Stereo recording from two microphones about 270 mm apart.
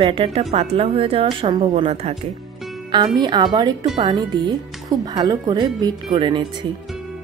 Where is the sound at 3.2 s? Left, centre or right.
Centre.